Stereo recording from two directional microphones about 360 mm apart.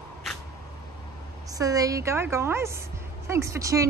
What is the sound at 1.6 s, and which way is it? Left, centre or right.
A woman's voice, centre.